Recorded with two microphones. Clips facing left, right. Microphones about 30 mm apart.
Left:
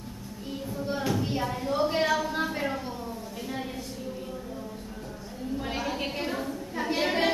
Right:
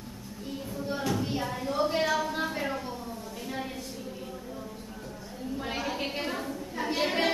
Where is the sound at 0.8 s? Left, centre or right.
Centre.